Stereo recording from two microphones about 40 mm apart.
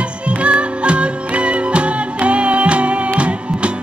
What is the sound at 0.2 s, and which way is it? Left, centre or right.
Music, right.